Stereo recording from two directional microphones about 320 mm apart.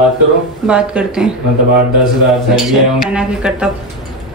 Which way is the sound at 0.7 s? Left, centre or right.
Centre.